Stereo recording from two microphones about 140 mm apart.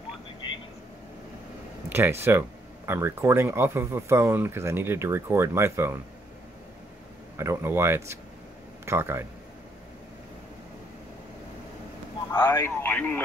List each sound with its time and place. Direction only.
1.9 s speech: 15° right (ahead or behind)
7.3 s speech: 20° right (ahead or behind)
12.3 s a man's voice: 15° left (ahead or behind)